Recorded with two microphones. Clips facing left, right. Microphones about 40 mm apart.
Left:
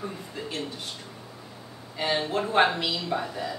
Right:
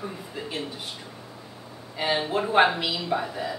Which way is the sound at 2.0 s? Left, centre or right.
Centre.